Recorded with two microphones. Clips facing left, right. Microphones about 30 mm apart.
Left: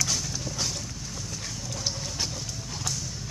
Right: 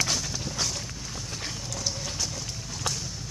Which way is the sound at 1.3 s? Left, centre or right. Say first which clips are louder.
Right 4 dB; right.